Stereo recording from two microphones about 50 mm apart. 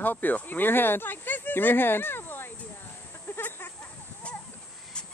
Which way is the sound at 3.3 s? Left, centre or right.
Left.